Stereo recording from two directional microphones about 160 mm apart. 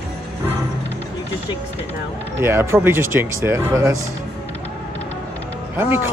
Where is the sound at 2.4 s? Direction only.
15° right (ahead or behind).